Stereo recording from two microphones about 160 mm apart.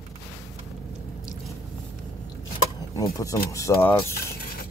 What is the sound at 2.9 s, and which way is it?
Speech, 20° left (ahead or behind).